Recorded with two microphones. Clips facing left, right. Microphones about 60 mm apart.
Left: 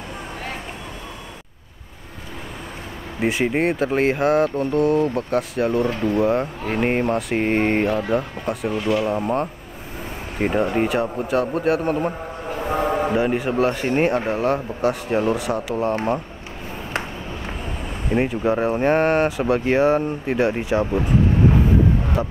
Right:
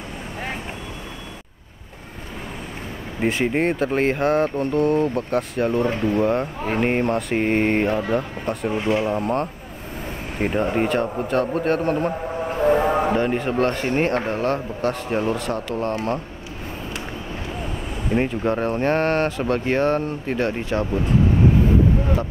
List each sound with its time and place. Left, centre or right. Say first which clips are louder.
3.2 s speech: left 1 dB; centre
8.7 s speech: even; right
9.0 s speech: left 1 dB; centre
13.1 s speech: left 1 dB; centre
18.1 s speech: left 1 dB; centre
22.2 s speech: left 2 dB; centre